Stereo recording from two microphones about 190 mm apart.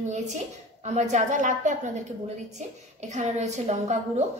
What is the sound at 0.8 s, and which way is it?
A woman's voice, 40° right (ahead or behind).